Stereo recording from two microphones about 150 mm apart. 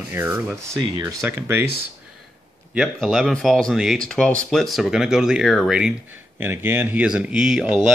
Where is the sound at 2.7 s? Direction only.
5° right (ahead or behind).